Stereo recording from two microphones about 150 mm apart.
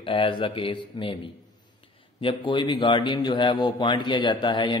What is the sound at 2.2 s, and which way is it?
A man's voice, 30° left (ahead or behind).